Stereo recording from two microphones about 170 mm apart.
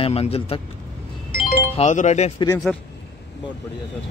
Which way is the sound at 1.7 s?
45° left (ahead or behind).